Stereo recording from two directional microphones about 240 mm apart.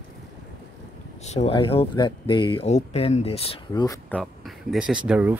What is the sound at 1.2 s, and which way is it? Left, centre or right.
Speech, left.